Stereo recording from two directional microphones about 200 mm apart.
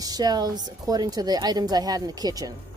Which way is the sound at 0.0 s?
20° right (ahead or behind).